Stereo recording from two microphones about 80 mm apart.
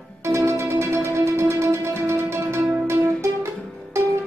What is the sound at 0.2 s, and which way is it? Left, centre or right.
Music, right.